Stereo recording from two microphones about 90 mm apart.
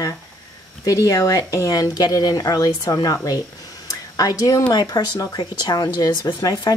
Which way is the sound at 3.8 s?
40° left (ahead or behind).